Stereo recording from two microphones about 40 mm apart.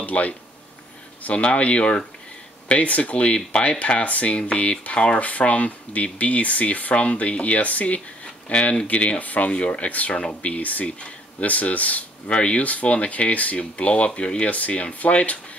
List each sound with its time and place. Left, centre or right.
0.0 s speech: left
14.5 s speech: left